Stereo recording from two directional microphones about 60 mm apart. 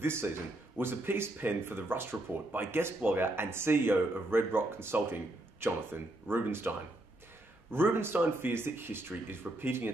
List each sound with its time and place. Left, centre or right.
0.0 s speech: right
7.7 s speech: right